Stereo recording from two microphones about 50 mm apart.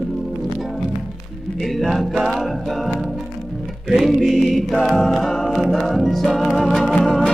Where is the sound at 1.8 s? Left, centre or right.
Centre.